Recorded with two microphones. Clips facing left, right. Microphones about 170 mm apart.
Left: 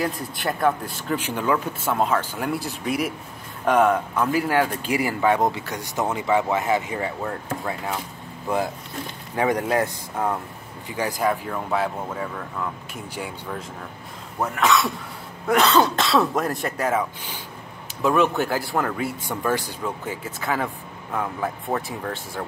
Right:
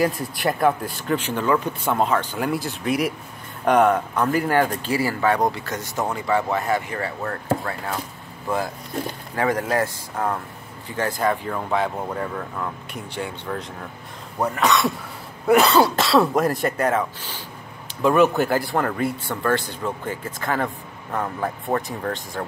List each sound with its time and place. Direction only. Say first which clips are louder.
0.0 s speech: right 4 dB; 5° right (ahead or behind)
4.9 s speech: even; 20° left (ahead or behind)
9.3 s speech: left 1 dB; 15° left (ahead or behind)
18.0 s speech: right 3 dB; centre (ahead or behind)
19.2 s speech: right 2 dB; 15° left (ahead or behind)